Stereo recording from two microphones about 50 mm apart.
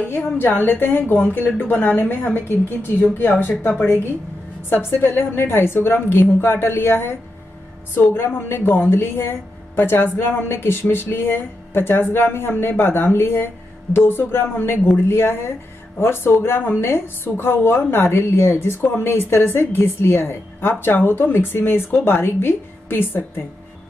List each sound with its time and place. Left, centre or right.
0.1 s a woman's voice: left